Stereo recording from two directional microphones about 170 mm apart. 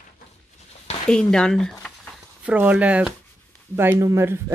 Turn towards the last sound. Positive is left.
turn(degrees=-15)  # may be behind; listen again after turning